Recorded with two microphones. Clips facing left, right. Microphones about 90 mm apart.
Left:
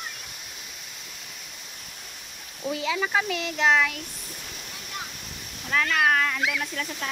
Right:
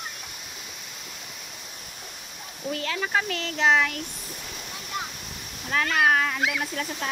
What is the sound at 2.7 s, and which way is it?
Speech, 10° left (ahead or behind).